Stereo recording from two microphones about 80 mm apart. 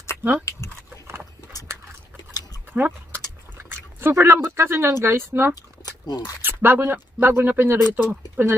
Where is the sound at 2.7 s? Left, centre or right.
Right.